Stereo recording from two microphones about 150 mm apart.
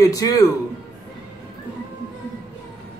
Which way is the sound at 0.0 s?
25° left (ahead or behind).